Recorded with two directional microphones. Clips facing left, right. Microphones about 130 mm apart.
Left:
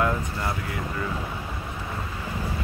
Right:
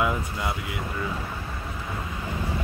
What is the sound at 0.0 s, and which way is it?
Speech, 5° right (ahead or behind).